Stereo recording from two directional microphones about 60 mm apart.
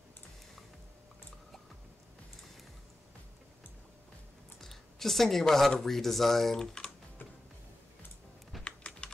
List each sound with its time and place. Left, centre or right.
4.6 s speech: centre
8.6 s typing: centre